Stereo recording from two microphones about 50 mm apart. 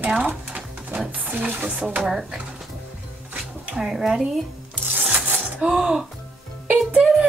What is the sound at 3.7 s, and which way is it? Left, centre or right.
Speech, centre.